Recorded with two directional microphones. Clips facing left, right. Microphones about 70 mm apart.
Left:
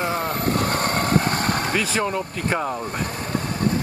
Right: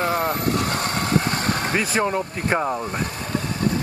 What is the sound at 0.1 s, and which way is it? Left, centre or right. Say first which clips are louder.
Vehicle: right 2 dB; right.